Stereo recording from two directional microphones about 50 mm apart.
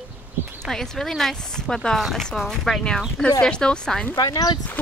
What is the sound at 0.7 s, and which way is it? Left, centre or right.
Speech, centre.